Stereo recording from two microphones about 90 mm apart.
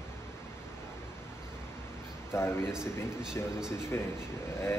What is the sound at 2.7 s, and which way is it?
Speech, 5° right (ahead or behind).